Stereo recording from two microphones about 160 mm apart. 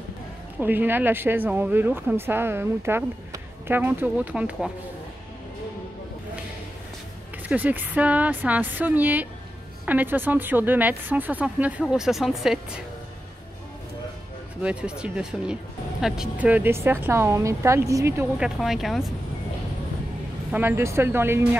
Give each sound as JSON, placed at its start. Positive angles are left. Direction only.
{"t": 0.6, "sound": "speech", "side_deg": -10}
{"t": 7.4, "sound": "speech", "side_deg": -10}
{"t": 14.6, "sound": "speech", "side_deg": -5}
{"t": 18.4, "sound": "speech", "side_deg": 0}
{"t": 20.5, "sound": "speech", "side_deg": -15}